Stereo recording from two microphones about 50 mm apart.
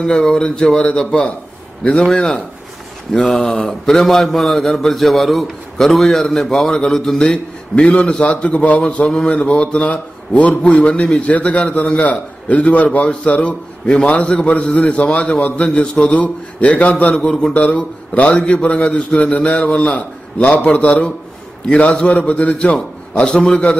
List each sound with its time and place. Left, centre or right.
0.0 s a man's voice: centre
3.2 s a man's voice: centre
7.7 s a man's voice: left